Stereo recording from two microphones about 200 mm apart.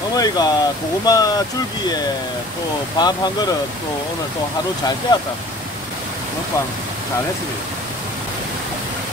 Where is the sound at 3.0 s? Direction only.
20° left (ahead or behind).